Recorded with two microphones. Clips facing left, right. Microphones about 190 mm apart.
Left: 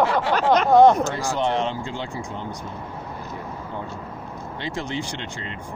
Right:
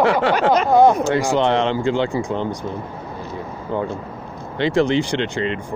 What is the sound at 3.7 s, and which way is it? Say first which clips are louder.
Speech: right 14 dB; 80° right.